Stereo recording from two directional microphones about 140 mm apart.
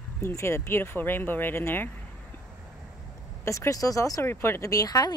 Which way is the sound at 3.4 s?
20° left (ahead or behind).